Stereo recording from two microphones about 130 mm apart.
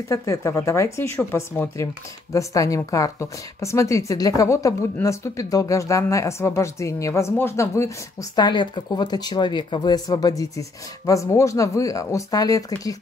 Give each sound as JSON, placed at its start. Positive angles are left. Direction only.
{"t": 0.1, "sound": "a woman's voice", "side_deg": 25}